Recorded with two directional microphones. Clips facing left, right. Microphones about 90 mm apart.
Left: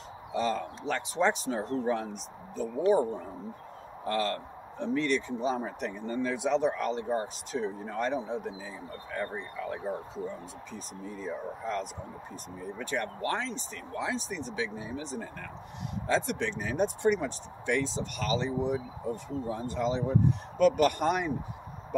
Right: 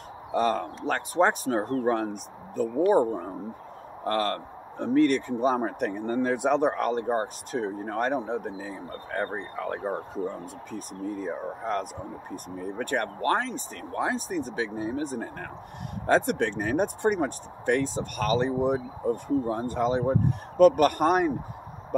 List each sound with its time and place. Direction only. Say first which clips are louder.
0.3 s a man's voice: right 5 dB; 50° right (ahead or behind)
4.0 s a man's voice: right 3 dB; 50° right (ahead or behind)